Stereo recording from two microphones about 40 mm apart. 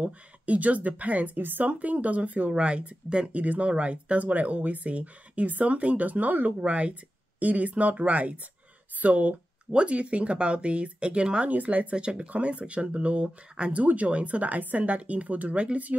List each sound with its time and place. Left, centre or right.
0.0 s speech: right
1.4 s speech: right
1.7 s speech: right
9.7 s speech: right
11.5 s speech: right